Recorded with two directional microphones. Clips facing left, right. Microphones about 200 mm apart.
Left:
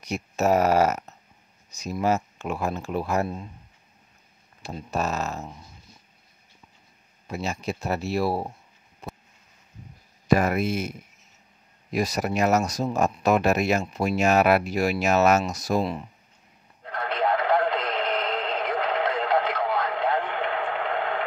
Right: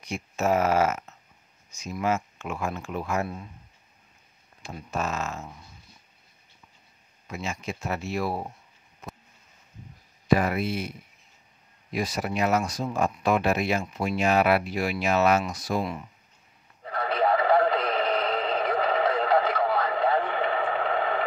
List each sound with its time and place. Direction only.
0.0 s speech: 40° left (ahead or behind)
4.7 s speech: 35° left (ahead or behind)
7.2 s speech: 35° left (ahead or behind)
9.0 s a sound: 35° left (ahead or behind)
10.2 s speech: 45° left (ahead or behind)
15.8 s speech: 30° left (ahead or behind)
16.8 s radio: 5° right (ahead or behind)